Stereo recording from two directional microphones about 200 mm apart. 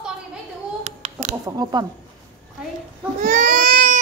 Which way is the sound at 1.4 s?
20° right (ahead or behind).